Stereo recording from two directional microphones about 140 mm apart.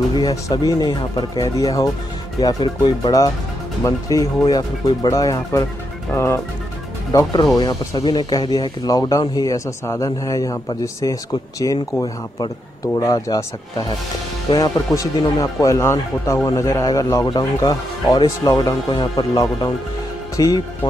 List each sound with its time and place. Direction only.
0.1 s speech: 25° left (ahead or behind)
14.5 s speech: 30° left (ahead or behind)